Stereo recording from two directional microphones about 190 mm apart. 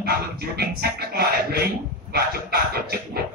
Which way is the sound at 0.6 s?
55° right (ahead or behind).